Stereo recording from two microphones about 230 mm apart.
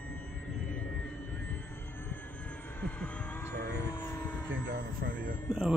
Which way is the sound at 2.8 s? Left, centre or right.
Centre.